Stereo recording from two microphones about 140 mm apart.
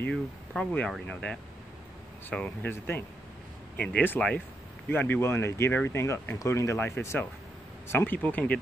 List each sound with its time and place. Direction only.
0.0 s speech: 5° left (ahead or behind)